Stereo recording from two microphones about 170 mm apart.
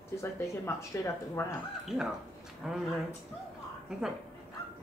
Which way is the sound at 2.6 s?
5° right (ahead or behind).